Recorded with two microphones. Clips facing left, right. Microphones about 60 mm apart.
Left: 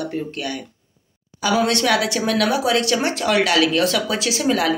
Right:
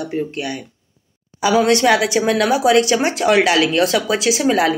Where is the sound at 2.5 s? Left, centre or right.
Centre.